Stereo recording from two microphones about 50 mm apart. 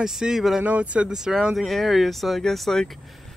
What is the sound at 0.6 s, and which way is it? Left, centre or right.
Speech, right.